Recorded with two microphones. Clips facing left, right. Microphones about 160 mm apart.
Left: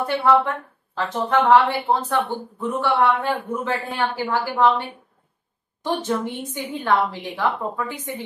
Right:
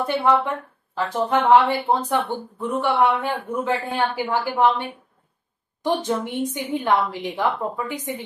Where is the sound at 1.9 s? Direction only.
20° right (ahead or behind).